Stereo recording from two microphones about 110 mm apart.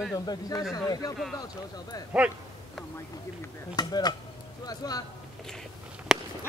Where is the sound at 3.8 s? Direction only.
40° left (ahead or behind).